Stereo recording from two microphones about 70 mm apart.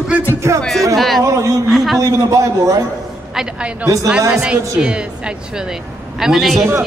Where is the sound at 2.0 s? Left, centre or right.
Right.